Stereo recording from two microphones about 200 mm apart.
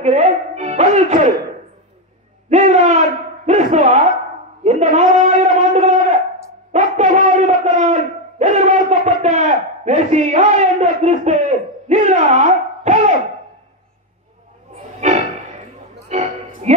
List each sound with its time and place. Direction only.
0.0 s music: 35° right (ahead or behind)
2.5 s speech: 35° right (ahead or behind)
4.6 s a sound: 35° right (ahead or behind)
14.8 s music: 35° right (ahead or behind)